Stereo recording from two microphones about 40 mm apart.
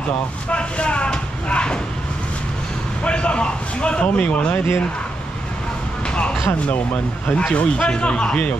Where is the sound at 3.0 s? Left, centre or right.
Left.